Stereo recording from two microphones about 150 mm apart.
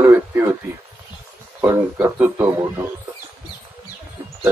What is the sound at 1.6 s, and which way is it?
Speech, 15° right (ahead or behind).